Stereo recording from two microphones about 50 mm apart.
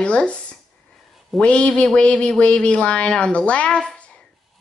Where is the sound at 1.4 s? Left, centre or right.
Left.